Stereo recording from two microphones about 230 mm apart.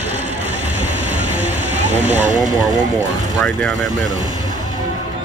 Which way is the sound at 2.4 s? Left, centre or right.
Centre.